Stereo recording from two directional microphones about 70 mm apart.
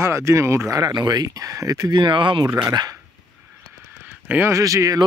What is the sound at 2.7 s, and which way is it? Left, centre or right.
Speech, right.